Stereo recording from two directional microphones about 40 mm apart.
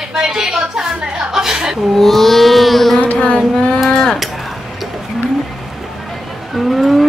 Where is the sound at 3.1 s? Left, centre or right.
Left.